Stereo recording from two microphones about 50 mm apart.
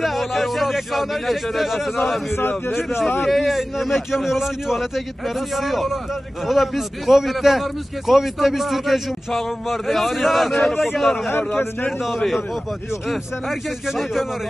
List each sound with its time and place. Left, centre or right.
0.0 s a man's voice: centre
2.3 s a man's voice: left
3.2 s a man's voice: centre
11.2 s a man's voice: left
12.1 s a man's voice: centre